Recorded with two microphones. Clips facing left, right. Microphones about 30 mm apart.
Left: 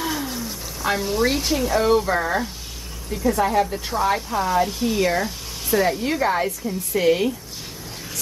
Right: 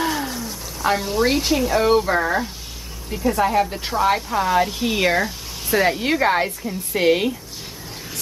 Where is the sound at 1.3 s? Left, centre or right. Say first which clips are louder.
Right 2 dB; centre.